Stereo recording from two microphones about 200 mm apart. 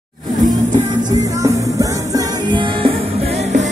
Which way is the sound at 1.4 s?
15° right (ahead or behind).